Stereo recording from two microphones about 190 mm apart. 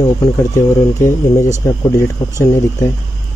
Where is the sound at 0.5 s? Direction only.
15° left (ahead or behind).